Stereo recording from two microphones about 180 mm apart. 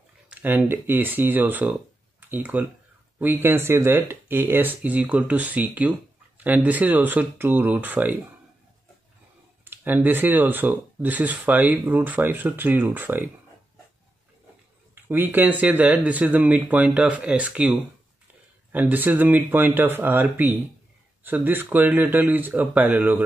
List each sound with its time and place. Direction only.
0.3 s speech: 10° right (ahead or behind)
9.7 s speech: 10° right (ahead or behind)
15.0 s speech: 10° right (ahead or behind)